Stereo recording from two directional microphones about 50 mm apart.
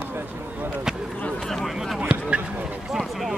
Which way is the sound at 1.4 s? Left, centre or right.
Centre.